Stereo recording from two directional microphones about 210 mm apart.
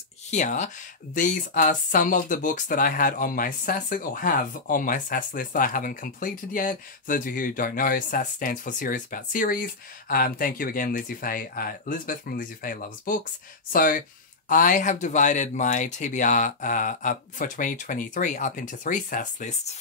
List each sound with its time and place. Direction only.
0.3 s speech: 35° left (ahead or behind)